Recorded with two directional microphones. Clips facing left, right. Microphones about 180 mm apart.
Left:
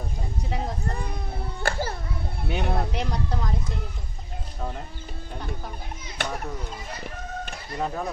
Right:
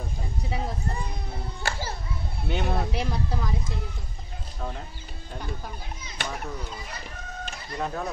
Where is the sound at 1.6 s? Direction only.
55° left (ahead or behind).